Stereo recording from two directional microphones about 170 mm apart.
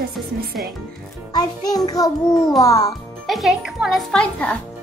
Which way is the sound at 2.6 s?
20° left (ahead or behind).